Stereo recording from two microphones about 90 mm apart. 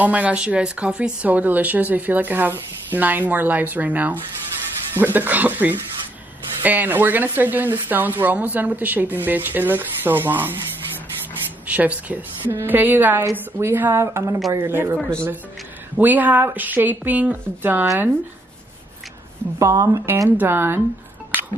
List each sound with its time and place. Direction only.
0.0 s a woman's voice: 15° right (ahead or behind)
11.6 s a woman's voice: 15° right (ahead or behind)
15.0 s speech: 10° left (ahead or behind)
16.0 s a woman's voice: 20° right (ahead or behind)
19.6 s a woman's voice: 35° right (ahead or behind)
20.2 s a woman's voice: 25° right (ahead or behind)